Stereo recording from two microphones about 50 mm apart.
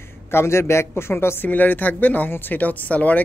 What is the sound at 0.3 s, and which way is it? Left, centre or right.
Speech, left.